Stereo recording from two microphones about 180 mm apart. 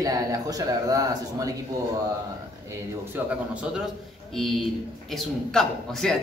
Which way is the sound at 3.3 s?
5° right (ahead or behind).